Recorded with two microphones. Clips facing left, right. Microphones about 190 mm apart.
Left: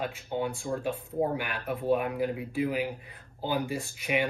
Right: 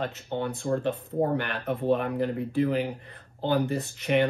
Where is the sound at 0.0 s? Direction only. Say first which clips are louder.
Right 1 dB; 10° left (ahead or behind).